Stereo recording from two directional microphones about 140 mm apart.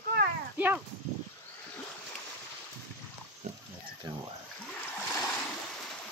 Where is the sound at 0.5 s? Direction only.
10° right (ahead or behind).